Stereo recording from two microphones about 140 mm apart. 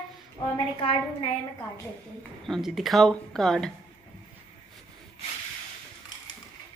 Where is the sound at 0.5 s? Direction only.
45° left (ahead or behind).